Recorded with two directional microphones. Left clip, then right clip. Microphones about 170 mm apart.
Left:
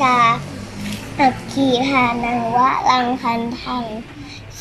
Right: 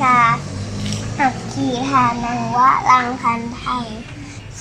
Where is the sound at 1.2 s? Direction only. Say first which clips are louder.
Left 3 dB; 15° left (ahead or behind).